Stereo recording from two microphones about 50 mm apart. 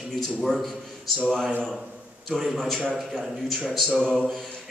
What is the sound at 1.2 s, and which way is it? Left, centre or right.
A man's voice, centre.